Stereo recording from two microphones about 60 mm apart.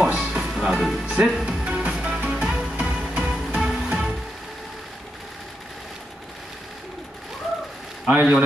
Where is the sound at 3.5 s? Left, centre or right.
Centre.